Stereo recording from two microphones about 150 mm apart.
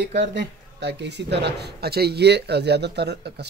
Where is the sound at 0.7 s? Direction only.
90° right.